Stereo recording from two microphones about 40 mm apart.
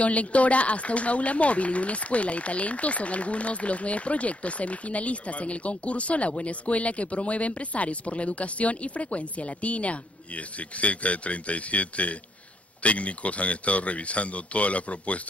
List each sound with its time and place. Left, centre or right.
0.0 s speech: left